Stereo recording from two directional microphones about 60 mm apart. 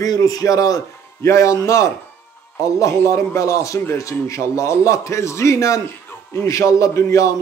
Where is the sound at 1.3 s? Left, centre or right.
Left.